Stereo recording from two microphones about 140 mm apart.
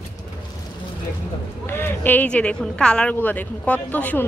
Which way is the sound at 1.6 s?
15° left (ahead or behind).